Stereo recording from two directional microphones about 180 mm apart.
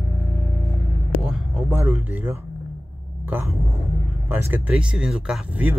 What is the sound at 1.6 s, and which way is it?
Speech, 10° right (ahead or behind).